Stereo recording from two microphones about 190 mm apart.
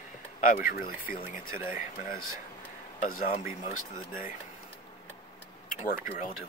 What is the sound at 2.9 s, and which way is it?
Speech, 35° left (ahead or behind).